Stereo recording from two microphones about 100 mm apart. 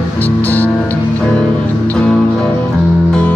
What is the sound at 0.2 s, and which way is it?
Music, 20° left (ahead or behind).